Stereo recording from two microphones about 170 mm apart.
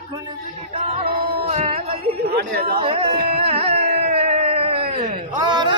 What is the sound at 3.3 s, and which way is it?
Carnatic music, 35° right (ahead or behind).